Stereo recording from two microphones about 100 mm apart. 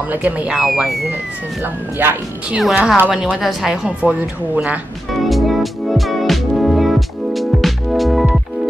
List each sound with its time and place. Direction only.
0.1 s a woman's voice: 15° right (ahead or behind)
1.6 s speech: 20° right (ahead or behind)
2.6 s a woman's voice: 5° right (ahead or behind)
5.1 s music: centre (ahead or behind)